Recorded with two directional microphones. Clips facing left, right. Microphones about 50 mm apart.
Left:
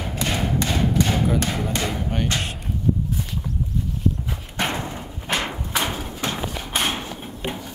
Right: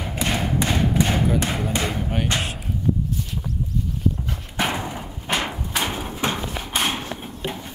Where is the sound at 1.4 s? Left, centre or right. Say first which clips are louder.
Even; centre.